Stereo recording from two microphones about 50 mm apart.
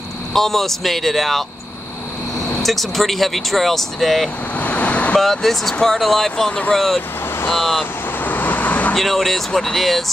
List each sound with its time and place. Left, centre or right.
0.3 s speech: centre
2.6 s speech: centre
4.6 s vehicle: left
5.2 s speech: centre
8.2 s vehicle: left
8.9 s speech: centre